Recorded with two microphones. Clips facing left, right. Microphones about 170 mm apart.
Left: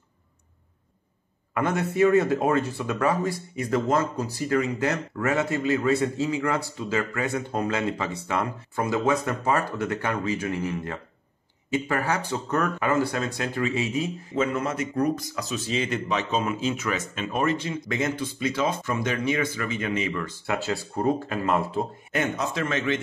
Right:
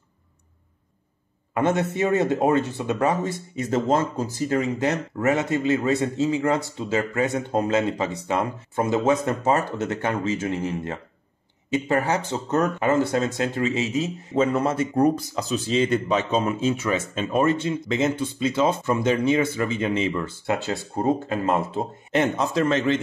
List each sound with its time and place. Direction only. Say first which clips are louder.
1.5 s speech: right 3 dB; 25° right (ahead or behind)